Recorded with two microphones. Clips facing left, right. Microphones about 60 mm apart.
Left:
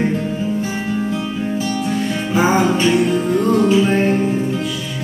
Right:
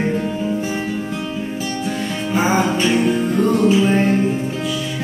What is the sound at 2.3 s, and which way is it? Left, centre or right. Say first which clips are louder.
Music: left 2 dB; centre.